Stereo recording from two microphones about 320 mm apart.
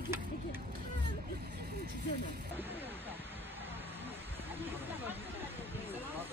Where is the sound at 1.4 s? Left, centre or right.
Right.